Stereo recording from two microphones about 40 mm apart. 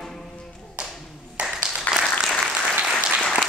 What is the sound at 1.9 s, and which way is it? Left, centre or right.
Applause, left.